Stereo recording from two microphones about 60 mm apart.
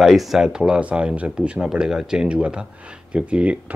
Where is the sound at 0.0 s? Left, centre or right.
Centre.